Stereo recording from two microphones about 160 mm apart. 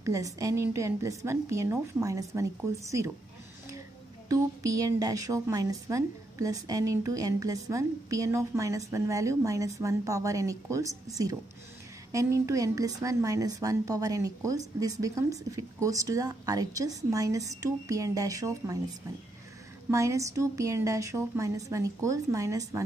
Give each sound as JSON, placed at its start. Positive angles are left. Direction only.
{"t": 0.0, "sound": "a woman's voice", "side_deg": -20}
{"t": 4.3, "sound": "a woman's voice", "side_deg": -20}
{"t": 19.9, "sound": "a woman's voice", "side_deg": -20}